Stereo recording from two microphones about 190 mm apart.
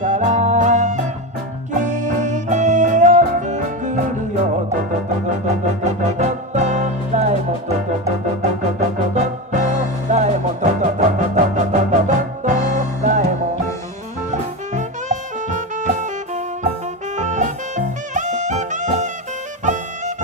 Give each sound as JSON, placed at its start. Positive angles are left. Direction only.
{"t": 0.0, "sound": "music", "side_deg": -40}
{"t": 5.9, "sound": "music", "side_deg": -35}
{"t": 8.4, "sound": "music", "side_deg": -35}
{"t": 14.3, "sound": "music", "side_deg": -40}
{"t": 17.2, "sound": "music", "side_deg": -40}